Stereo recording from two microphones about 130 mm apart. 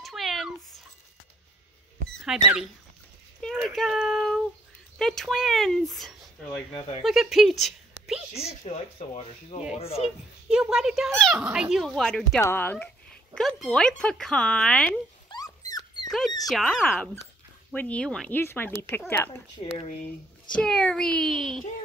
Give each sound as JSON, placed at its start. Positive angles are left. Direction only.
{"t": 0.0, "sound": "cat", "side_deg": 0}
{"t": 2.0, "sound": "a child's voice", "side_deg": -5}
{"t": 8.5, "sound": "speech", "side_deg": 55}
{"t": 10.5, "sound": "speech", "side_deg": -5}
{"t": 12.4, "sound": "a sound", "side_deg": 15}
{"t": 13.4, "sound": "speech", "side_deg": 5}
{"t": 15.2, "sound": "dog", "side_deg": 30}
{"t": 16.1, "sound": "speech", "side_deg": 5}
{"t": 16.9, "sound": "speech", "side_deg": 15}
{"t": 18.3, "sound": "speech", "side_deg": 15}
{"t": 19.6, "sound": "speech", "side_deg": 50}
{"t": 20.5, "sound": "speech", "side_deg": 5}